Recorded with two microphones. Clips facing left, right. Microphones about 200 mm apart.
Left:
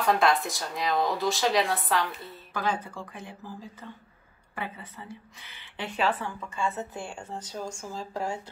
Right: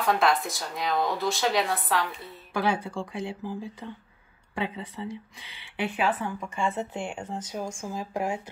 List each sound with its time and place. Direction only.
0.0 s speech: centre (ahead or behind)
2.5 s a woman's voice: 10° right (ahead or behind)
4.6 s a woman's voice: 15° right (ahead or behind)